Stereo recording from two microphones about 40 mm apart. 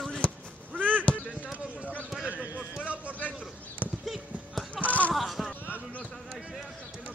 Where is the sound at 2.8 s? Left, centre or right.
Right.